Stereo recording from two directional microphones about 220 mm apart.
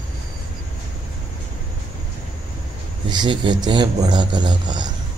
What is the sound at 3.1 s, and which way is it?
Mantra, 20° right (ahead or behind).